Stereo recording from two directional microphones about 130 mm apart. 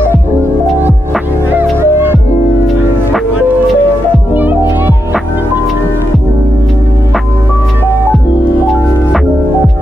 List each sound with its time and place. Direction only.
0.0 s music: 15° right (ahead or behind)
4.3 s music: 15° right (ahead or behind)